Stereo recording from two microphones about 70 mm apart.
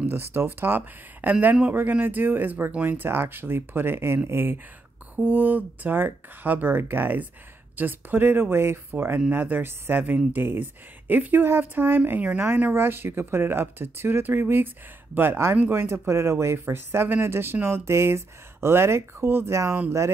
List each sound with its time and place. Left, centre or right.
0.1 s speech: right